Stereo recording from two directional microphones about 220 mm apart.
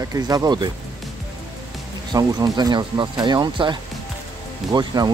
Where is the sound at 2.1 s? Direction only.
20° right (ahead or behind).